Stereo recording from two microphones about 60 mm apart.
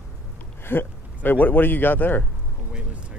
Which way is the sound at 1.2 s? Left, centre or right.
Left.